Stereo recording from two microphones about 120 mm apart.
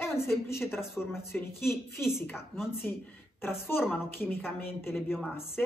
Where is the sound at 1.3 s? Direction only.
20° left (ahead or behind).